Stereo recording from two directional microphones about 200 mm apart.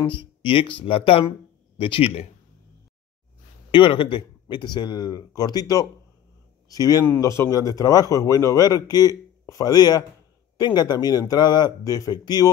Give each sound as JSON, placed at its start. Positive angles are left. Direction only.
{"t": 0.0, "sound": "speech", "side_deg": 25}
{"t": 3.7, "sound": "a man's voice", "side_deg": 25}